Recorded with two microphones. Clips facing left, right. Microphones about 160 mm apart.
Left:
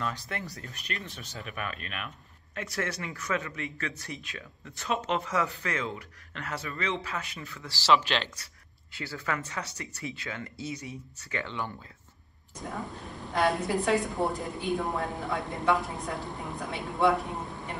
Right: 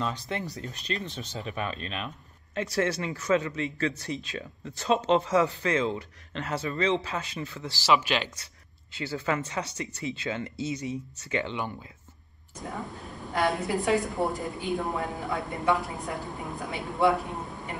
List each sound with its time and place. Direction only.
0.0 s speech: 20° right (ahead or behind)
7.9 s speech: 5° right (ahead or behind)
8.9 s speech: 20° right (ahead or behind)
12.6 s a woman's voice: centre (ahead or behind)